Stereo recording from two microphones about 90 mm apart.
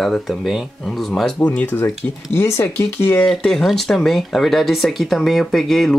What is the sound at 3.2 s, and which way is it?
Speech, 5° left (ahead or behind).